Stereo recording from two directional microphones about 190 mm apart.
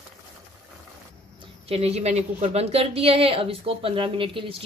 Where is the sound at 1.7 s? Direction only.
35° right (ahead or behind).